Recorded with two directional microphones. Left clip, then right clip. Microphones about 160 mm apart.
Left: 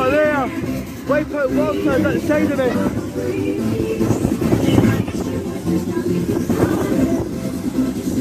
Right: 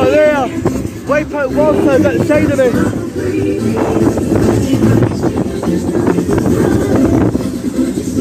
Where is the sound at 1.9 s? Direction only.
15° left (ahead or behind).